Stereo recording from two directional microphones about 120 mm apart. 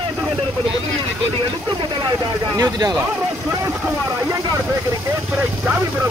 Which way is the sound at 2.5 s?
30° right (ahead or behind).